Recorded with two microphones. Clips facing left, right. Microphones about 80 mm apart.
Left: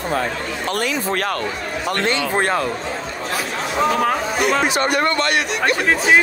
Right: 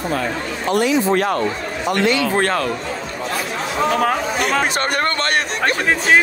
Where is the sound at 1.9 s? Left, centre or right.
Left.